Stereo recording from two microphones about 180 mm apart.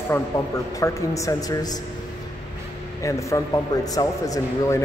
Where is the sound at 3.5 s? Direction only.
20° left (ahead or behind).